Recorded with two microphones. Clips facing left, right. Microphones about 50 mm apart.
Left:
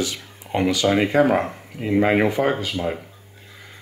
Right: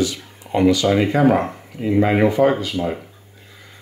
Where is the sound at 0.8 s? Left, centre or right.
Centre.